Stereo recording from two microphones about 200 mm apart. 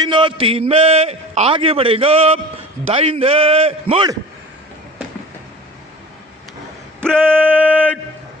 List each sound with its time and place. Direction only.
0.0 s a man's voice: 25° right (ahead or behind)
7.0 s male singing: 5° left (ahead or behind)